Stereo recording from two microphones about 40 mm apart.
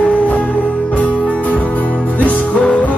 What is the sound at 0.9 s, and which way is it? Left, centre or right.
Music, left.